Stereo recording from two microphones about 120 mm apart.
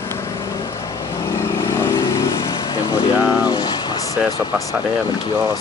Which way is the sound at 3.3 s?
35° left (ahead or behind).